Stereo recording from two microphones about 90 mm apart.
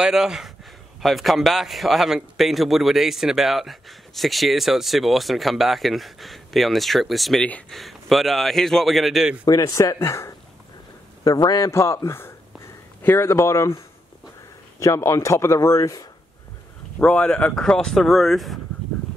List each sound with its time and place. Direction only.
0.0 s a man's voice: 5° right (ahead or behind)
9.5 s speech: 40° left (ahead or behind)
11.2 s a man's voice: 50° left (ahead or behind)
11.6 s a man's voice: 30° left (ahead or behind)
17.0 s speech: 10° left (ahead or behind)